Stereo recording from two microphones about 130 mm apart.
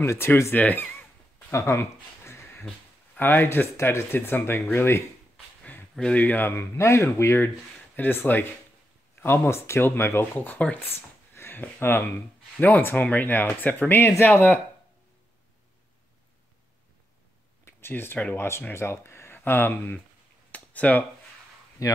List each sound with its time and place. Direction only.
0.0 s speech: 20° left (ahead or behind)
1.5 s a sound: 20° left (ahead or behind)
3.2 s speech: 15° left (ahead or behind)
17.6 s speech: 15° left (ahead or behind)
20.5 s a sound: 10° left (ahead or behind)
21.8 s speech: 25° left (ahead or behind)